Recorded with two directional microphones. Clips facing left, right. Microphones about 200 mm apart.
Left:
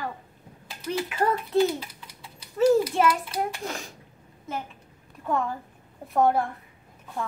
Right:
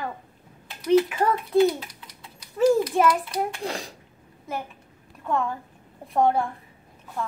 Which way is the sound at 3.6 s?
35° right (ahead or behind).